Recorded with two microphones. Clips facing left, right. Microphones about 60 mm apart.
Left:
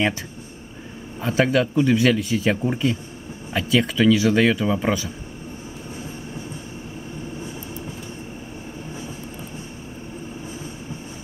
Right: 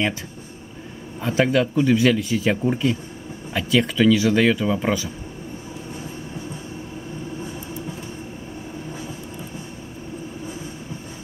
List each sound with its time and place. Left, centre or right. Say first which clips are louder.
1.2 s speech: even; centre